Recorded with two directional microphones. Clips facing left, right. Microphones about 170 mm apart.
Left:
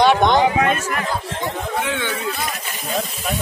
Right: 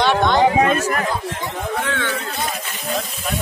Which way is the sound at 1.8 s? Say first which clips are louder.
Left 1 dB; 15° left (ahead or behind).